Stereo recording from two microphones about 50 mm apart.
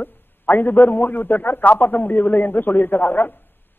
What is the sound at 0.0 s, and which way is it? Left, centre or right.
A man's voice, left.